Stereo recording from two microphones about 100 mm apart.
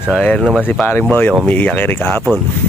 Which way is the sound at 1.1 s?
20° left (ahead or behind).